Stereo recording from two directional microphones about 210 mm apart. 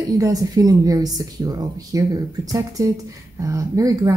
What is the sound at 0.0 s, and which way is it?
Speech, 15° right (ahead or behind).